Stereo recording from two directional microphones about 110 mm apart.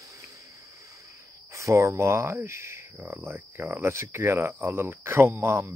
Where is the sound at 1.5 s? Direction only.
25° right (ahead or behind).